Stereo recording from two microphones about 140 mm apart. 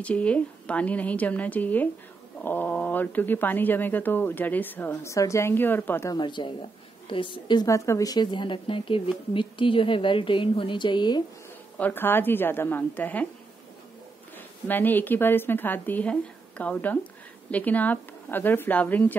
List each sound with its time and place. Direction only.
0.0 s a woman's voice: 10° left (ahead or behind)
6.1 s speech: 35° left (ahead or behind)
7.6 s speech: 20° left (ahead or behind)
11.8 s a woman's voice: 15° left (ahead or behind)
14.7 s a woman's voice: 15° left (ahead or behind)